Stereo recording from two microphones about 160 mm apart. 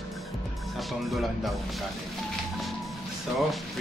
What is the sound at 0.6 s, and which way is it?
Speech, centre (ahead or behind).